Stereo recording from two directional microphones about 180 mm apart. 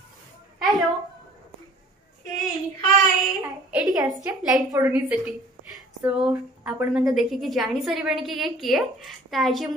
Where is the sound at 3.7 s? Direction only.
5° right (ahead or behind).